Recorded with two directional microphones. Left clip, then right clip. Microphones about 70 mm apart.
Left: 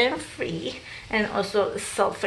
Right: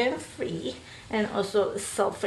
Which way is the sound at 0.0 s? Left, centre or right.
Centre.